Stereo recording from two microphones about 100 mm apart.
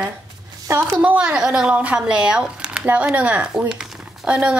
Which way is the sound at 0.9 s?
10° right (ahead or behind).